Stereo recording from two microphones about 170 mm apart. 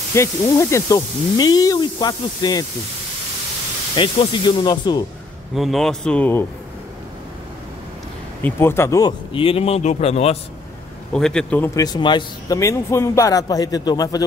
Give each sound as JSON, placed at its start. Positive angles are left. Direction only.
{"t": 0.1, "sound": "speech", "side_deg": 15}
{"t": 3.9, "sound": "speech", "side_deg": 30}
{"t": 5.5, "sound": "speech", "side_deg": 0}
{"t": 8.4, "sound": "speech", "side_deg": 15}
{"t": 9.3, "sound": "a man's voice", "side_deg": 30}
{"t": 11.1, "sound": "speech", "side_deg": 5}
{"t": 11.7, "sound": "speech", "side_deg": 25}